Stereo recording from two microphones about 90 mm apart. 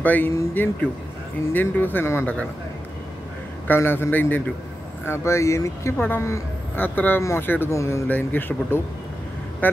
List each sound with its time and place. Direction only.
0.0 s speech: 20° left (ahead or behind)
3.6 s speech: 25° left (ahead or behind)
5.9 s speech: 20° left (ahead or behind)
6.2 s a woman's voice: 30° left (ahead or behind)
6.8 s speech: 20° left (ahead or behind)
7.7 s speech: 35° left (ahead or behind)
8.1 s speech: 20° left (ahead or behind)